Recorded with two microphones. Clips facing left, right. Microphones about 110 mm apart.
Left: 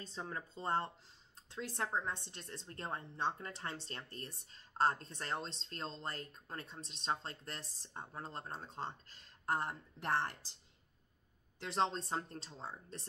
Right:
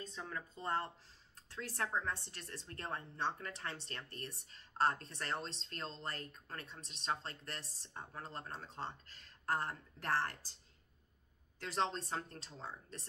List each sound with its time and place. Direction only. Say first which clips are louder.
0.0 s speech: left 1 dB; 30° left (ahead or behind)
11.6 s speech: left 2 dB; 20° left (ahead or behind)